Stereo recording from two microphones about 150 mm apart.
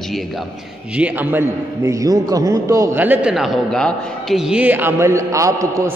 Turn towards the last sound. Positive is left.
turn(degrees=-20)  # may be behind; listen again after turning